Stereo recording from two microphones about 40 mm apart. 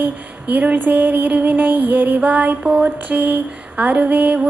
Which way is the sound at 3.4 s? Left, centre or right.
Right.